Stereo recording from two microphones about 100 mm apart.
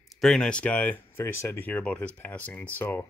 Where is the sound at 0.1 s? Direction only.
Centre (ahead or behind).